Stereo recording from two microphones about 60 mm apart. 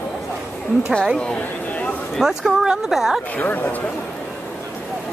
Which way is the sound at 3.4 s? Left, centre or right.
Left.